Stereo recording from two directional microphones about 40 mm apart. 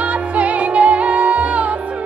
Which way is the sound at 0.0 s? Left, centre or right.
Right.